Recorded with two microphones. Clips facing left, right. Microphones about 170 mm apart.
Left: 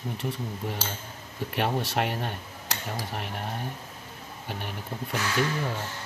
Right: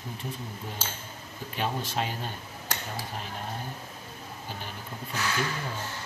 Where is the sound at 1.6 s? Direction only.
70° left (ahead or behind).